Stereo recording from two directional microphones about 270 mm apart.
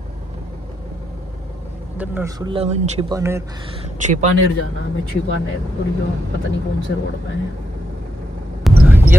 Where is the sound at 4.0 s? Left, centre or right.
Right.